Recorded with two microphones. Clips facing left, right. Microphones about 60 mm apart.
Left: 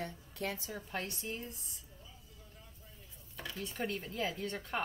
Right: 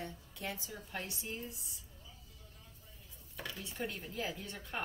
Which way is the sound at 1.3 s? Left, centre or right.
Left.